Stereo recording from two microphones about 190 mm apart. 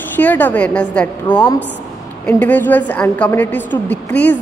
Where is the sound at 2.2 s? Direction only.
10° left (ahead or behind).